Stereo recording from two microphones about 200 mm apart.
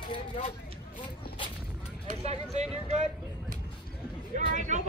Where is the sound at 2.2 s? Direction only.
35° right (ahead or behind).